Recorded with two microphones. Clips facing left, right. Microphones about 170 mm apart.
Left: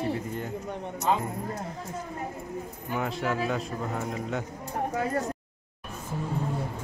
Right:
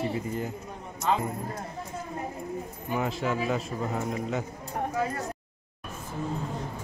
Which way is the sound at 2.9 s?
Centre (ahead or behind).